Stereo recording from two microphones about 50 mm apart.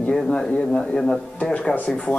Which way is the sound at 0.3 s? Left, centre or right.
Centre.